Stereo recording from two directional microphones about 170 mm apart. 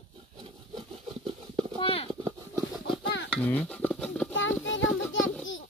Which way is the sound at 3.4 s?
10° left (ahead or behind).